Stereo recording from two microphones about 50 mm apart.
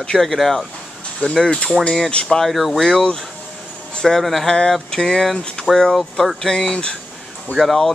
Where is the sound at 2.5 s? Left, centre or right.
Centre.